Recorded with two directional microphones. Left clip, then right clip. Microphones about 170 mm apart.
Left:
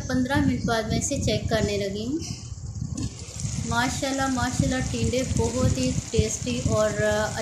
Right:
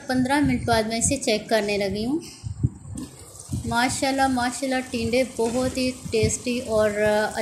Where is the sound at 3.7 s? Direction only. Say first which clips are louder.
Right 3 dB; 15° right (ahead or behind).